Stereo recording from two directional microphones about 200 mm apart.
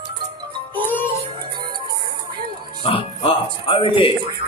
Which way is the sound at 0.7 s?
10° left (ahead or behind).